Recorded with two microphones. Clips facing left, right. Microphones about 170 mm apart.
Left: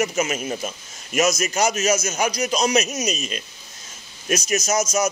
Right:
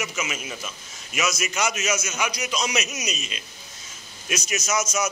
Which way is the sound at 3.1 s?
45° left (ahead or behind).